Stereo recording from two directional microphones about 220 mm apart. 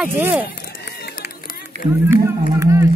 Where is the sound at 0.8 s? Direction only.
45° left (ahead or behind).